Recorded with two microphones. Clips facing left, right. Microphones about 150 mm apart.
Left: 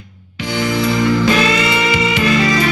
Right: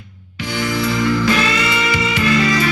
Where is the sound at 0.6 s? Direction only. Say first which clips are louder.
Left 3 dB; 25° left (ahead or behind).